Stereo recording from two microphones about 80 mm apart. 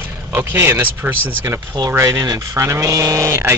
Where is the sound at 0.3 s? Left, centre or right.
Right.